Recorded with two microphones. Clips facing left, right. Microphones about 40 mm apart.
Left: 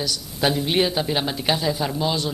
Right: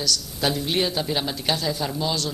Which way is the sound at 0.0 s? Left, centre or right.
Centre.